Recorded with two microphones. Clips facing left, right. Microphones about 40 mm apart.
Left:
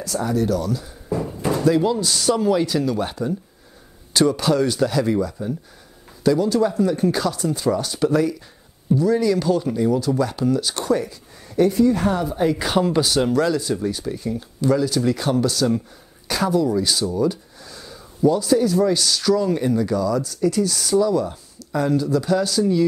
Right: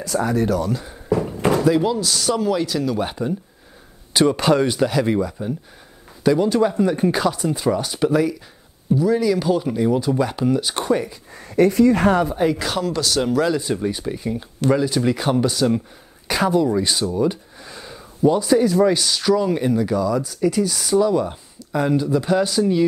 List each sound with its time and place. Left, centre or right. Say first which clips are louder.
0.2 s speech: even; right
1.7 s speech: left 3 dB; centre
2.0 s speech: left 1 dB; centre
3.0 s speech: right 1 dB; centre
4.3 s speech: right 3 dB; right
4.6 s speech: right 1 dB; right
11.3 s a sound: right 2 dB; right
11.7 s speech: right 3 dB; right
12.5 s speech: left 3 dB; centre
13.6 s speech: right 1 dB; right
19.0 s speech: right 1 dB; centre